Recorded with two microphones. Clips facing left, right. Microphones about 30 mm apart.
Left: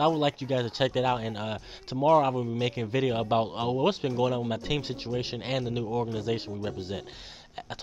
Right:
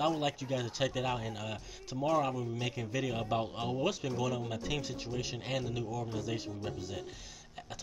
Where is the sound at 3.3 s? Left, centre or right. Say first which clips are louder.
Left 8 dB; left.